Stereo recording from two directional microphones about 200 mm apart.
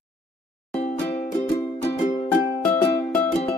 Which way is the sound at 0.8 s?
30° left (ahead or behind).